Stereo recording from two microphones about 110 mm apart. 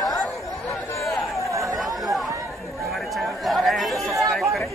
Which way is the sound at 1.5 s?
30° right (ahead or behind).